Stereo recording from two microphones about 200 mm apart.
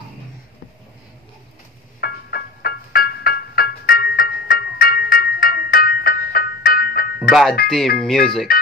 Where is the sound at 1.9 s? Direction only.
50° left (ahead or behind).